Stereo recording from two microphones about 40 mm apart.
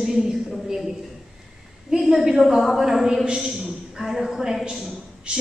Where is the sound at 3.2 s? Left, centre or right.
Centre.